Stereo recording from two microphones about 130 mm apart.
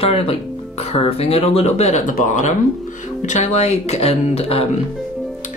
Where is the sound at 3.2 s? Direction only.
65° left (ahead or behind).